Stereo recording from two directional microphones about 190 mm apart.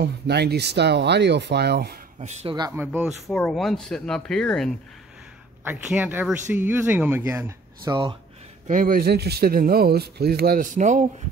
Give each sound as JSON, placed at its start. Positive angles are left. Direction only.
{"t": 0.0, "sound": "speech", "side_deg": -60}
{"t": 2.1, "sound": "speech", "side_deg": -35}
{"t": 2.5, "sound": "speech", "side_deg": -20}
{"t": 2.8, "sound": "speech", "side_deg": -10}
{"t": 5.6, "sound": "speech", "side_deg": -10}
{"t": 7.9, "sound": "speech", "side_deg": -25}
{"t": 8.6, "sound": "speech", "side_deg": -45}